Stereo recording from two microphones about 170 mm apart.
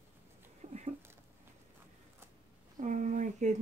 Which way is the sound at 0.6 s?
40° right (ahead or behind).